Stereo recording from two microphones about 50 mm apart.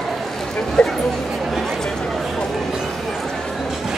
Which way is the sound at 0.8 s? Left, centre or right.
Centre.